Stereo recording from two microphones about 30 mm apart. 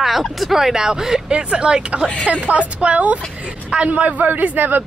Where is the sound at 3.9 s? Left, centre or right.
Right.